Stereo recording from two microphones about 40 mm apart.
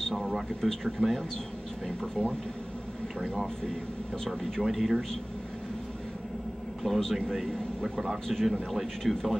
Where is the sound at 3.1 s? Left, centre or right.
Centre.